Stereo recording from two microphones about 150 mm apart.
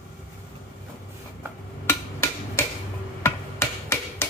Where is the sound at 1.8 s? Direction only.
15° left (ahead or behind).